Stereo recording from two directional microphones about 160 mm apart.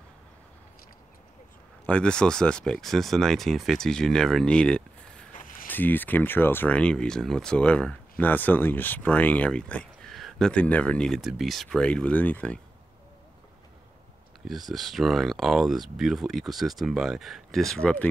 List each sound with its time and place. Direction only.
1.9 s speech: 5° left (ahead or behind)
5.3 s a sound: 55° left (ahead or behind)
5.7 s speech: 10° left (ahead or behind)
14.7 s speech: centre (ahead or behind)